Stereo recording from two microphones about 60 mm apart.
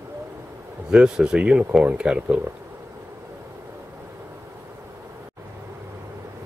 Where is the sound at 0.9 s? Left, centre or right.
Centre.